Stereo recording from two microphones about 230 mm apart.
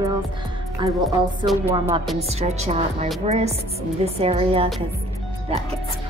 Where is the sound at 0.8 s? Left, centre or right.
Centre.